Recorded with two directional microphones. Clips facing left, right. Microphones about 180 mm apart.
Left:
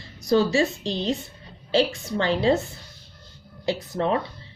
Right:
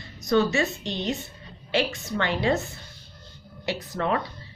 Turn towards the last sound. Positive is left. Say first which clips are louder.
# left 3 dB
turn(degrees=25)  # may be behind; listen again after turning